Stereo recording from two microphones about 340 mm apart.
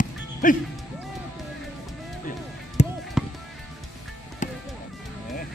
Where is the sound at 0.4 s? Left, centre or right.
Left.